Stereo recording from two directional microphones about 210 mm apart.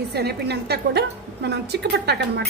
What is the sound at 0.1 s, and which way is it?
A woman's voice, 50° right (ahead or behind).